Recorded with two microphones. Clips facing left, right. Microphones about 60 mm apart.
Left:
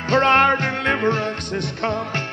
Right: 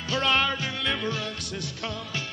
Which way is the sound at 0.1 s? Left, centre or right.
Left.